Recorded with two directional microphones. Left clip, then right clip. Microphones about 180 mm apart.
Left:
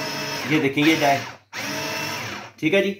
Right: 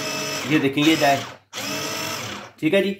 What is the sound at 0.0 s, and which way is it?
Music, 20° right (ahead or behind).